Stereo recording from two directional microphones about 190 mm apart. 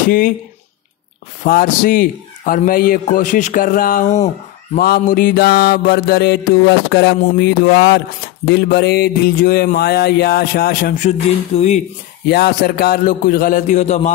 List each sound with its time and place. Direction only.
1.4 s a man's voice: 45° left (ahead or behind)
11.1 s speech: 35° left (ahead or behind)
12.3 s a man's voice: 55° left (ahead or behind); by 14.1 s 35° left (ahead or behind)